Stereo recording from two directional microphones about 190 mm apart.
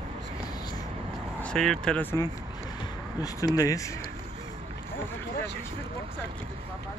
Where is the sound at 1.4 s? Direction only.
5° left (ahead or behind).